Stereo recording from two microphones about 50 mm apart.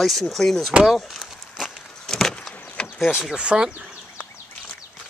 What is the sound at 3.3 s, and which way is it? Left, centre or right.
Speech, centre.